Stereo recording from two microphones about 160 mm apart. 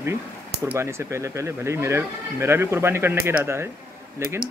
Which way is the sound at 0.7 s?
15° right (ahead or behind).